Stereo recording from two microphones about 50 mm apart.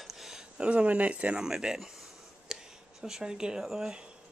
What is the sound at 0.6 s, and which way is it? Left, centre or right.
Speech, right.